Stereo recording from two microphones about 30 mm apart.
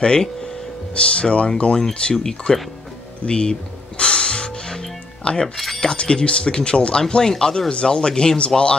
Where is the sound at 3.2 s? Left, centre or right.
Left.